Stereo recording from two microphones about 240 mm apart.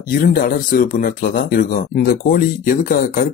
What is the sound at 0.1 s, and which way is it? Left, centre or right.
Speech, left.